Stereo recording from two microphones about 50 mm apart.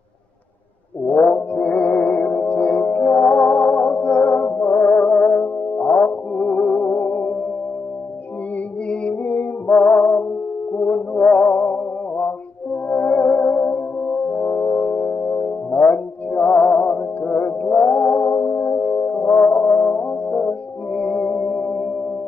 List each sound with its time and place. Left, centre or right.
1.0 s music: centre
6.9 s music: left
9.2 s music: left
9.7 s music: left
17.6 s brass instrument: centre